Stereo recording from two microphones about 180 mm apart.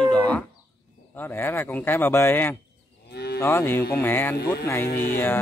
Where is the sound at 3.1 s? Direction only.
65° left (ahead or behind).